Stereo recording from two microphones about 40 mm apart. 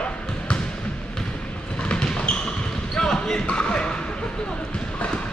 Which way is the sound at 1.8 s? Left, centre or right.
Left.